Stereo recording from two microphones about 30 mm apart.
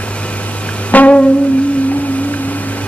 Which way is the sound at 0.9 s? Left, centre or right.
Left.